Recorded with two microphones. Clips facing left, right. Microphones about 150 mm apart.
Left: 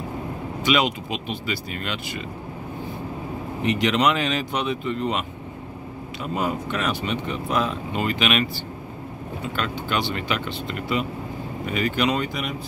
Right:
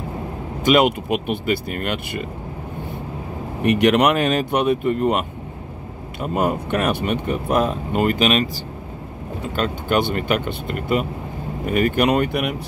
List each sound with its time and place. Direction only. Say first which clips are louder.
0.6 s speech: right 6 dB; 50° right (ahead or behind)
3.6 s speech: right 5 dB; 60° right (ahead or behind)
6.2 s speech: right 5 dB; 50° right (ahead or behind)
9.6 s speech: right 7 dB; 50° right (ahead or behind)